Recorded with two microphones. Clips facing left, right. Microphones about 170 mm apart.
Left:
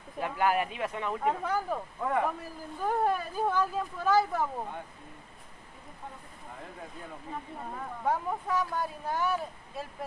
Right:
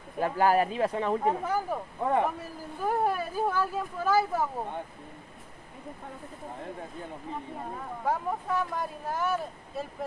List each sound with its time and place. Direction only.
0.2 s speech: 35° right (ahead or behind)
1.4 s speech: 10° right (ahead or behind)
2.0 s speech: 30° right (ahead or behind)
2.8 s speech: 10° right (ahead or behind)
8.0 s speech: centre (ahead or behind)